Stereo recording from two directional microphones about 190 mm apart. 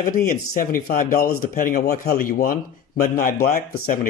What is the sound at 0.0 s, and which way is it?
Speech, 45° left (ahead or behind).